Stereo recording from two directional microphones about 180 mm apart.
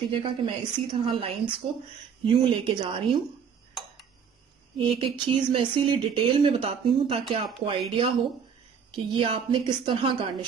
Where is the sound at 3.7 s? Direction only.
Centre (ahead or behind).